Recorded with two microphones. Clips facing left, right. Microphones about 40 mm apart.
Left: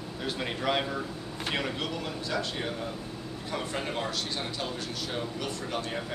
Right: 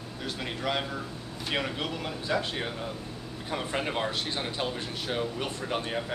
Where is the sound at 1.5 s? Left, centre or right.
Centre.